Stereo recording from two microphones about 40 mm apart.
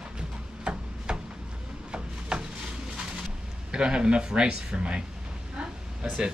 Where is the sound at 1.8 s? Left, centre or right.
Right.